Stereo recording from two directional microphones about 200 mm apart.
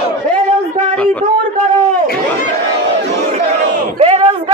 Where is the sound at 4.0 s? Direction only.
30° right (ahead or behind).